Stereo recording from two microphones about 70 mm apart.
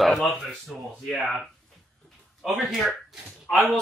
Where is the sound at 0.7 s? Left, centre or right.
Centre.